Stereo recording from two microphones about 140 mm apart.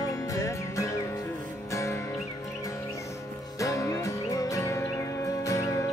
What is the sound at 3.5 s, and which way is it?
Music, 25° left (ahead or behind).